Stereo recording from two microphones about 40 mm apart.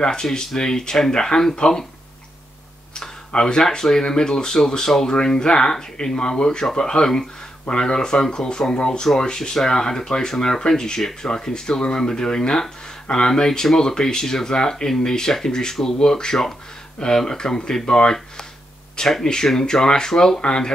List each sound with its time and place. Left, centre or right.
0.0 s speech: centre
3.3 s speech: left
19.2 s speech: centre